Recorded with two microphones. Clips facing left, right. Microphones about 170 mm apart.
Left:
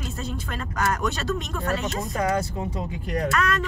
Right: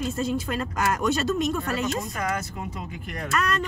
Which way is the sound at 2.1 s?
30° left (ahead or behind).